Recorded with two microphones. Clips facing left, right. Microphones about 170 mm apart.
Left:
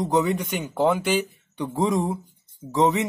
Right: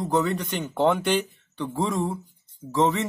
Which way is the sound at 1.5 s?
15° left (ahead or behind).